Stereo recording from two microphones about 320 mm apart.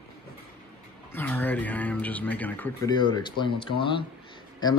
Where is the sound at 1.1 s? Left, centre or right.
Centre.